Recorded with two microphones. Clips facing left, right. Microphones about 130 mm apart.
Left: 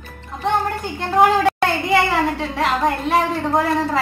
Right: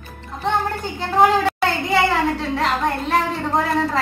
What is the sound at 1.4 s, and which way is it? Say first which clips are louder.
A woman's voice: left 2 dB; centre (ahead or behind).